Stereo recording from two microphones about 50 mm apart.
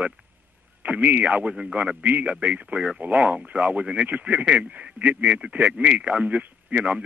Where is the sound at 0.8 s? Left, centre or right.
Right.